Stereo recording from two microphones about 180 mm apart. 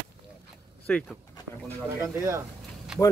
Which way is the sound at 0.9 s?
5° left (ahead or behind).